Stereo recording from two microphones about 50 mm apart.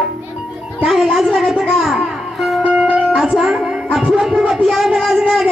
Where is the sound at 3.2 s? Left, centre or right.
Centre.